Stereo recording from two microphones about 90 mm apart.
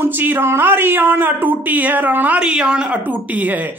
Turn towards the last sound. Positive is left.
turn(degrees=-15)  # may be behind; listen again after turning